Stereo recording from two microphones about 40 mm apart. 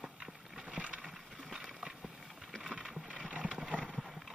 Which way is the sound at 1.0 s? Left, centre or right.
Centre.